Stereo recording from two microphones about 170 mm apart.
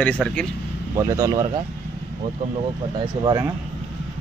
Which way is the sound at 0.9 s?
20° right (ahead or behind).